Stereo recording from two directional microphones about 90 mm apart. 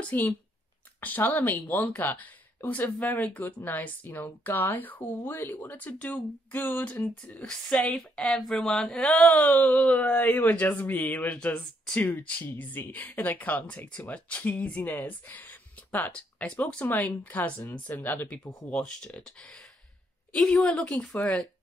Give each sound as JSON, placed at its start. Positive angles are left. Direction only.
{"t": 0.0, "sound": "speech", "side_deg": 15}
{"t": 7.4, "sound": "speech", "side_deg": 5}
{"t": 9.2, "sound": "speech", "side_deg": 15}